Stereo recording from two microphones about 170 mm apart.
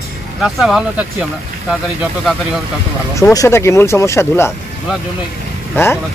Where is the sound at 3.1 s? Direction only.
20° left (ahead or behind).